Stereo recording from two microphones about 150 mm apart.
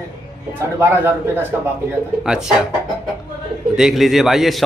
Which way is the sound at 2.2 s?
5° right (ahead or behind).